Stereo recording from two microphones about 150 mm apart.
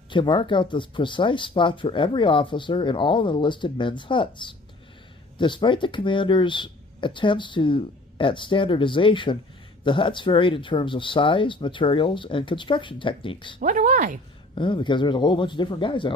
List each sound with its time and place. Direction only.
0.1 s speech: 35° left (ahead or behind)
13.6 s speech: 60° right (ahead or behind)
14.5 s speech: 35° left (ahead or behind)